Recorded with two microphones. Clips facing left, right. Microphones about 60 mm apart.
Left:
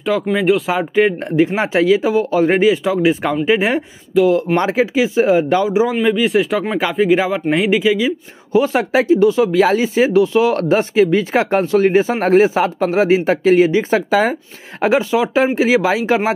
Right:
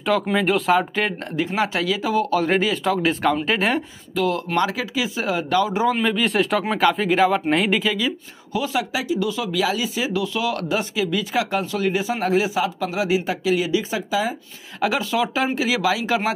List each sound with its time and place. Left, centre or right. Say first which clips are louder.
0.0 s speech: left 4 dB; centre
1.3 s speech: left 7 dB; left
2.8 s speech: left 4 dB; centre; by 5.7 s left
5.7 s speech: left 5 dB; centre
8.5 s speech: left 9 dB; left
14.8 s speech: left 6 dB; left